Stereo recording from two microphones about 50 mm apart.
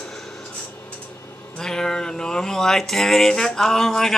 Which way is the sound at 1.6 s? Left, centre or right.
Centre.